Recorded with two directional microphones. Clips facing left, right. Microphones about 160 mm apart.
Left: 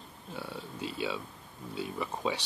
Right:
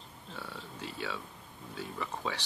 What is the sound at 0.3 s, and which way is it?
Speech, 15° left (ahead or behind).